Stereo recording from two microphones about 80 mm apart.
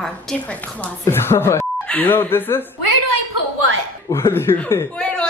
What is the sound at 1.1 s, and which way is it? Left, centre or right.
Speech, left.